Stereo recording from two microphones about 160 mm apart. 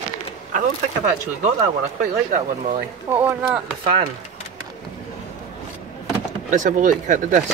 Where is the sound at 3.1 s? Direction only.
10° right (ahead or behind).